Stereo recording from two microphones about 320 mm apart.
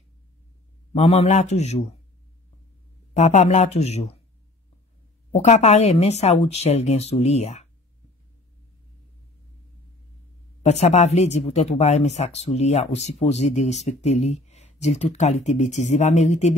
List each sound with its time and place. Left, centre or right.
0.9 s speech: centre
3.2 s speech: left
5.3 s speech: left
10.6 s speech: left